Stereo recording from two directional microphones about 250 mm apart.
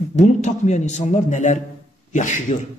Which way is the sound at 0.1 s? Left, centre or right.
Left.